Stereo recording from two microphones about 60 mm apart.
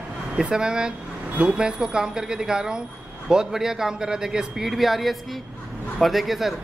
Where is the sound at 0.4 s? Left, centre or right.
Centre.